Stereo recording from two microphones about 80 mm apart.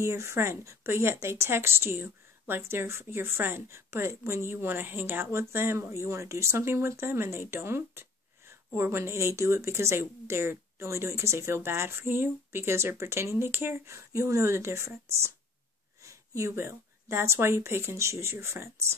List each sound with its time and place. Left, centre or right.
0.0 s speech: right